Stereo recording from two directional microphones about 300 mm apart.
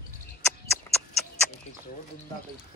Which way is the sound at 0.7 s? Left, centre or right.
Centre.